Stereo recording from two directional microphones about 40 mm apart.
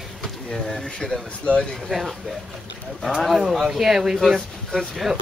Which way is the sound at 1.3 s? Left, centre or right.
Left.